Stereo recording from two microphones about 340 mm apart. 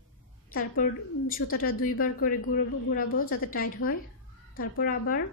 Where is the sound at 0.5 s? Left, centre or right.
Left.